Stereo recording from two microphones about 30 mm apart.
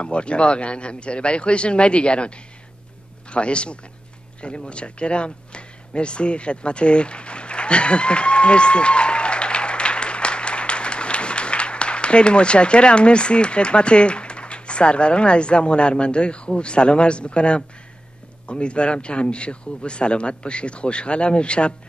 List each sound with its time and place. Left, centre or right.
0.0 s speech: left